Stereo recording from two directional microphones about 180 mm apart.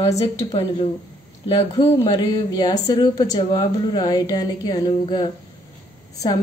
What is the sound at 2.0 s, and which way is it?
Speech, 25° left (ahead or behind).